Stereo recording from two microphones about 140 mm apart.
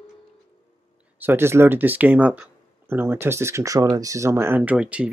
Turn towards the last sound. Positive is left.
turn(degrees=-10)  # may be behind; listen again after turning